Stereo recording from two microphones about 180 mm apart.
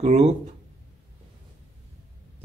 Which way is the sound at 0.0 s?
40° right (ahead or behind).